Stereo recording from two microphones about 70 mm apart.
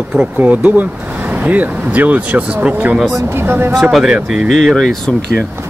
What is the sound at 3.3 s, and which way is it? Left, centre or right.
Speech, right.